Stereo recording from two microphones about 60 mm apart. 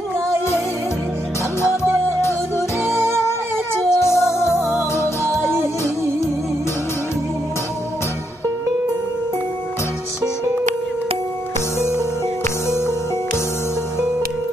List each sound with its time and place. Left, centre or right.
2.8 s music: right
3.9 s music: left
4.6 s music: right
5.2 s music: right
12.6 s music: left